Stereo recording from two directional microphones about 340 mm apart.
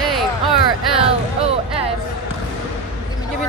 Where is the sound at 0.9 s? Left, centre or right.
Centre.